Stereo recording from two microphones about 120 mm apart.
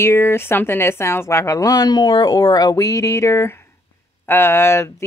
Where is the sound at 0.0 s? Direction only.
20° left (ahead or behind).